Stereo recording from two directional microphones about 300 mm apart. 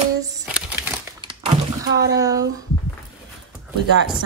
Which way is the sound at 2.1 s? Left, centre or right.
Centre.